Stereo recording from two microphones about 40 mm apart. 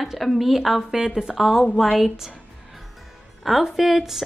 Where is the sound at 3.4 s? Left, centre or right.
Centre.